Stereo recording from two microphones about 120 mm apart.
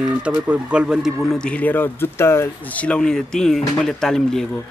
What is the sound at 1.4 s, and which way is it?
Speech, 10° left (ahead or behind).